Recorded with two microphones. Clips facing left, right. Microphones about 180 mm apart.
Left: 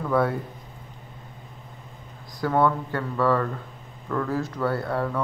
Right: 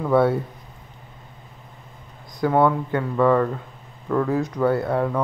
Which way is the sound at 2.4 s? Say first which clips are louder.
Right 4 dB; 20° right (ahead or behind).